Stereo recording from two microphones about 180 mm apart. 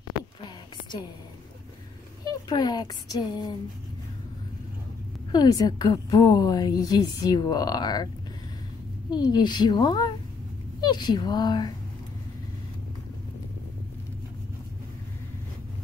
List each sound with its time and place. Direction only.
2.2 s a woman's voice: 25° left (ahead or behind)
5.3 s a woman's voice: 20° left (ahead or behind)
9.1 s a woman's voice: 25° left (ahead or behind)